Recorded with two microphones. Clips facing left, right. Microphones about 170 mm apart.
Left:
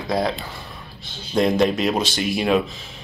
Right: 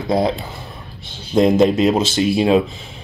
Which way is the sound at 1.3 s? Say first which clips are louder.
Right 5 dB; 25° right (ahead or behind).